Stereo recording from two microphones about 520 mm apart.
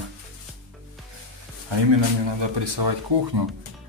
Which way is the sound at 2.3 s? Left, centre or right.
Right.